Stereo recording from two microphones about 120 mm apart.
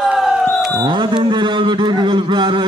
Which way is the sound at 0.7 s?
40° right (ahead or behind).